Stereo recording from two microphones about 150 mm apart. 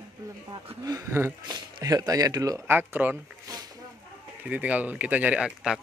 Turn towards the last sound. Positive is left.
turn(degrees=-5)  # may be behind; listen again after turning